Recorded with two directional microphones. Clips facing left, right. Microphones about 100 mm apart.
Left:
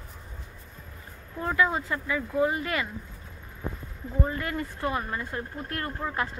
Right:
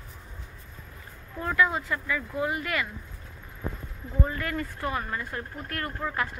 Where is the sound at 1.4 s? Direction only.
25° left (ahead or behind).